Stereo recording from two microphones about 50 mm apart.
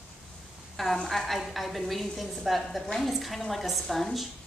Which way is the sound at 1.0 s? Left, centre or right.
Centre.